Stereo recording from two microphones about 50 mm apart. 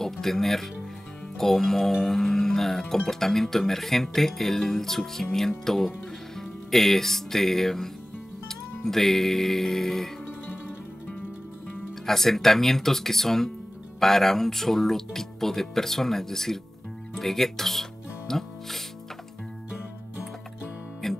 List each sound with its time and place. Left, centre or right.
0.0 s speech: centre
1.3 s music: centre
3.1 s speech: centre
12.1 s speech: centre
21.0 s music: centre